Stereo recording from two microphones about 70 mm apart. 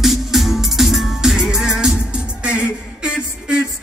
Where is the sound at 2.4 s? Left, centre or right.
Centre.